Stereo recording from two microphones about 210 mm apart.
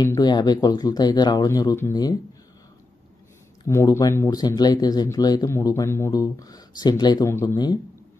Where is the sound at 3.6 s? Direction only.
15° left (ahead or behind).